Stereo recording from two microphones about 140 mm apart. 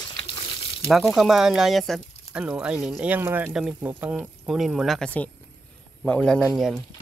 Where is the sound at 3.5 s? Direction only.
5° right (ahead or behind).